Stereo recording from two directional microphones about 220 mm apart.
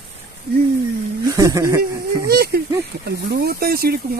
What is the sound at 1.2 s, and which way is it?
Speech, 15° right (ahead or behind).